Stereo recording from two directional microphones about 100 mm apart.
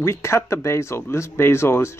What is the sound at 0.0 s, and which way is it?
Speech, 25° left (ahead or behind).